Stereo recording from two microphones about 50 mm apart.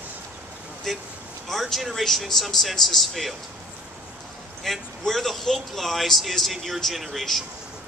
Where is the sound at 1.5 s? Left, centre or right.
Centre.